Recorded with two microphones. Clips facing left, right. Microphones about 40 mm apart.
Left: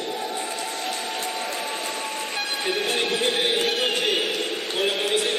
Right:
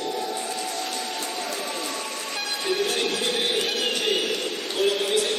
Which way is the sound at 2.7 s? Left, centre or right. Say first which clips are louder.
Even; left.